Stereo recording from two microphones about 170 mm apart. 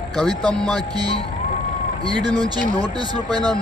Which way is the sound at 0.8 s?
25° right (ahead or behind).